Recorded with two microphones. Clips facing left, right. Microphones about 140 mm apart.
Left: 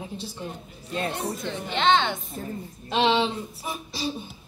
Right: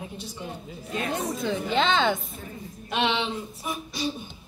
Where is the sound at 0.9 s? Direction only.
30° left (ahead or behind).